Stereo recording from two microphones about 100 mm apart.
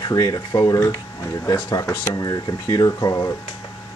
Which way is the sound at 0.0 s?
40° left (ahead or behind).